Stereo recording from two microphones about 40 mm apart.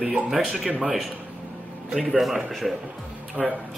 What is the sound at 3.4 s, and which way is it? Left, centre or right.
Speech, left.